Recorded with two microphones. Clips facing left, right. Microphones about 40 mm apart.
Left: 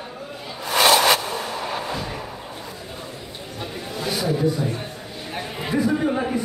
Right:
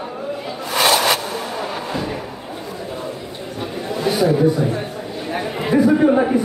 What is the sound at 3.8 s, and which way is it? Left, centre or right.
Chatter, centre.